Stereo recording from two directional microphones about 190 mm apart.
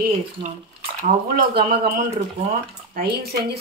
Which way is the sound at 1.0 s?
45° right (ahead or behind).